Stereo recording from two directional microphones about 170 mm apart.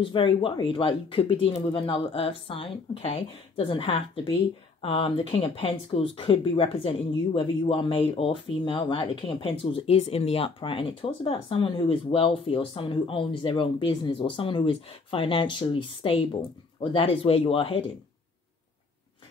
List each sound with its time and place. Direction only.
0.0 s speech: 30° left (ahead or behind)